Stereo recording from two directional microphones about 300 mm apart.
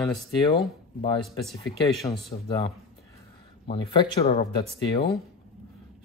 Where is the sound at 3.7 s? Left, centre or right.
Centre.